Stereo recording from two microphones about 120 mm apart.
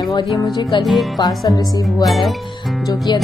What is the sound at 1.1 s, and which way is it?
Speech, 30° left (ahead or behind).